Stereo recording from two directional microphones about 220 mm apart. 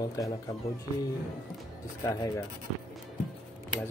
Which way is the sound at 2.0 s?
15° left (ahead or behind).